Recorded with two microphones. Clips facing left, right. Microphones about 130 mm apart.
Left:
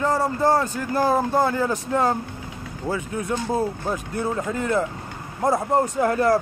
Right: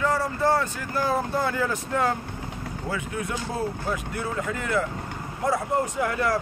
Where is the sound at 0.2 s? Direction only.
40° left (ahead or behind).